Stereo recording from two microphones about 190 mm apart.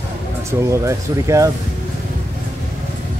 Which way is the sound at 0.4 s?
15° right (ahead or behind).